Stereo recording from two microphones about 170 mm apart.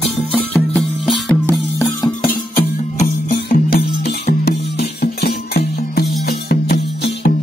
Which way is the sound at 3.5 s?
70° left (ahead or behind).